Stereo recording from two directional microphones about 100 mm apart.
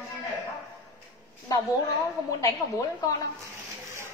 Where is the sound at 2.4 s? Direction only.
35° left (ahead or behind).